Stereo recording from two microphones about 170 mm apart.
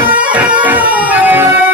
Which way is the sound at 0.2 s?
10° right (ahead or behind).